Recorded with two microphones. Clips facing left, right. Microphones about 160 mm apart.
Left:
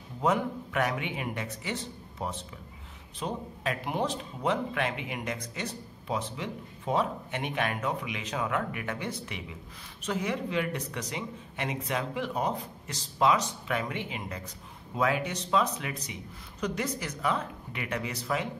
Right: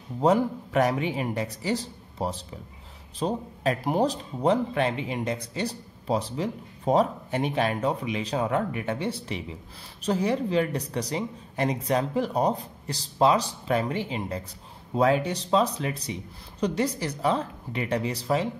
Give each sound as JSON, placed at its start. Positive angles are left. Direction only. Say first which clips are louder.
{"t": 0.2, "sound": "speech", "louder": "right 6 dB", "side_deg": -35}